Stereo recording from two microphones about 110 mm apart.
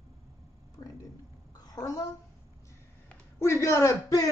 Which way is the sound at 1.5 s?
35° left (ahead or behind).